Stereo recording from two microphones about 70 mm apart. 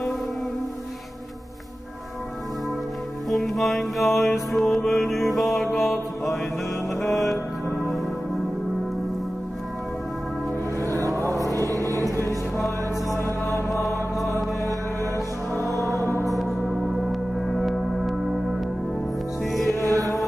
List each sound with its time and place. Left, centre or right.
3.3 s music: centre
10.8 s music: right
13.1 s mantra: left
13.7 s music: left
15.6 s music: right
16.3 s gong: centre
19.4 s music: centre
19.8 s music: right